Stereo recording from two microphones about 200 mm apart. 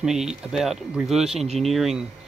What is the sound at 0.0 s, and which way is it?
Speech, 5° right (ahead or behind).